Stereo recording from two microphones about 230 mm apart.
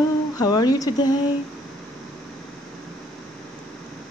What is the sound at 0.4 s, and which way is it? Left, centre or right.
Speech, centre.